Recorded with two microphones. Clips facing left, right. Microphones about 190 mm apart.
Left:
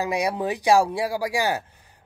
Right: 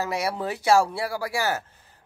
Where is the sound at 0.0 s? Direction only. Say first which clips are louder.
Left 3 dB; 15° left (ahead or behind).